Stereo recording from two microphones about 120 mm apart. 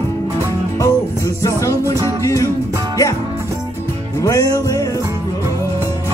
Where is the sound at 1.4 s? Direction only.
25° left (ahead or behind).